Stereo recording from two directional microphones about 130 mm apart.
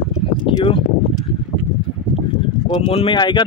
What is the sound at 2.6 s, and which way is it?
Speech, 40° left (ahead or behind).